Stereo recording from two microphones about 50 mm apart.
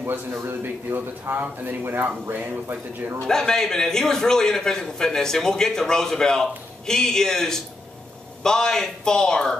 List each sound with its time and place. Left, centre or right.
0.3 s a man's voice: right
1.3 s speech: right
3.3 s a man's voice: centre